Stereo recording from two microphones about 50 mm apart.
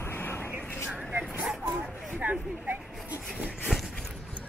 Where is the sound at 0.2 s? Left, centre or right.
Left.